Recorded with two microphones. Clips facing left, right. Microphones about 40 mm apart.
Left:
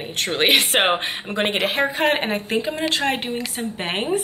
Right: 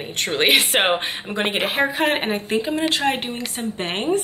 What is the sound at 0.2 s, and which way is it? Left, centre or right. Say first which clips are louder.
A woman's voice: even; centre.